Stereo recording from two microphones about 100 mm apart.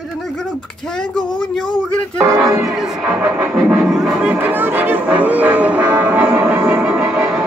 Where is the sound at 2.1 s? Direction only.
30° right (ahead or behind).